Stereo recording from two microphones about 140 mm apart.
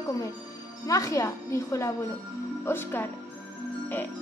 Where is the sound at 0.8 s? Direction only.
25° left (ahead or behind).